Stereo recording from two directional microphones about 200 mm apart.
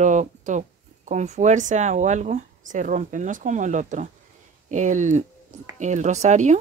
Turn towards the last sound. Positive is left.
turn(degrees=-35)  # may be behind; listen again after turning